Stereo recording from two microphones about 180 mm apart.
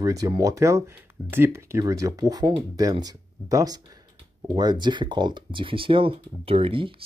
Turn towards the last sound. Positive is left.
turn(degrees=-30)  # may be behind; listen again after turning